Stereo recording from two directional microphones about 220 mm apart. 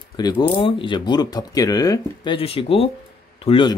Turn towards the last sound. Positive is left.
turn(degrees=25)  # may be behind; listen again after turning